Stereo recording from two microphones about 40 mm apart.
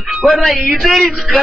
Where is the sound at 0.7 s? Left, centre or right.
Centre.